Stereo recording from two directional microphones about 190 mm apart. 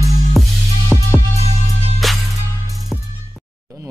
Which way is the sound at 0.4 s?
Centre (ahead or behind).